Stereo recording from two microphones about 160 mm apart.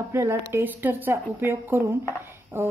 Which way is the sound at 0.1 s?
15° right (ahead or behind).